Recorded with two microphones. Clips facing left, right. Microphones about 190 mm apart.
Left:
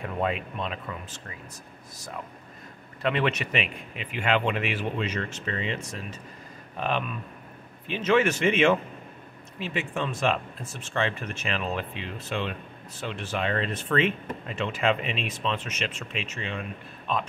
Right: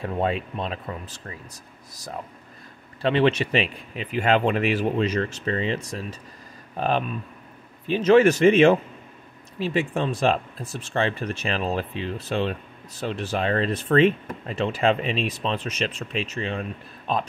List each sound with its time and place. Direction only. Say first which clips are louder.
0.0 s speech: right 3 dB; 30° right (ahead or behind)
3.0 s speech: right 6 dB; 30° right (ahead or behind)